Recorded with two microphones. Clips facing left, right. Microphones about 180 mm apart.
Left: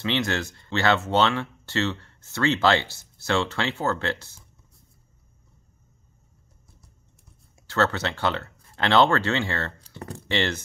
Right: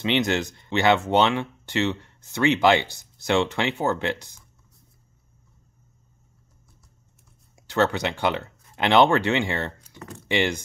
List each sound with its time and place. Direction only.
0.0 s speech: 20° right (ahead or behind)
7.6 s speech: 15° right (ahead or behind)
9.8 s typing: 35° left (ahead or behind)
10.2 s speech: 15° right (ahead or behind)